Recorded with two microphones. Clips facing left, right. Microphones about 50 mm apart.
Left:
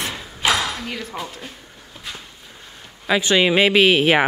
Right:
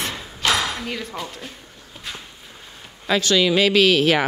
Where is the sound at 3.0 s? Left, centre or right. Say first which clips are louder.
Left 1 dB; centre.